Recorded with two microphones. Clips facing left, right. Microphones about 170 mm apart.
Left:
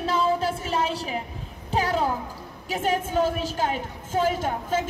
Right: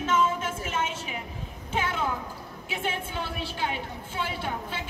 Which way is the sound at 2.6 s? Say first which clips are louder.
Left 7 dB; 40° left (ahead or behind).